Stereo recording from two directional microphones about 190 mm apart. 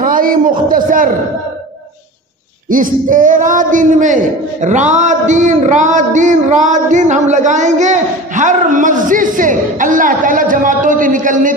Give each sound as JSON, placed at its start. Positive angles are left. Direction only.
{"t": 0.0, "sound": "a man's voice", "side_deg": -45}
{"t": 2.7, "sound": "speech", "side_deg": -45}